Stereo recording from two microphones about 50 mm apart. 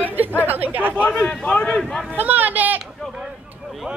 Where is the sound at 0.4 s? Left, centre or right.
Right.